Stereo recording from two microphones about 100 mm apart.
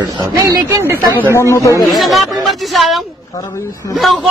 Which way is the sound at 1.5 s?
35° left (ahead or behind).